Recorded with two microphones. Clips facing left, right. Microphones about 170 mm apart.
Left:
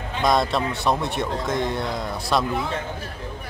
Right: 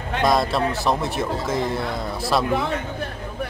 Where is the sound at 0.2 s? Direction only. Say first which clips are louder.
Right 1 dB; centre (ahead or behind).